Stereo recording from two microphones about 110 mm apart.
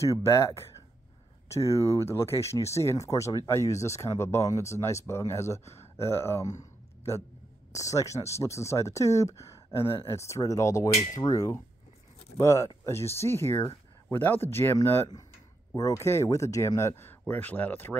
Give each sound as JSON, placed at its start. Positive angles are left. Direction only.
{"t": 0.0, "sound": "speech", "side_deg": 30}
{"t": 6.6, "sound": "a sound", "side_deg": 25}
{"t": 7.7, "sound": "speech", "side_deg": 30}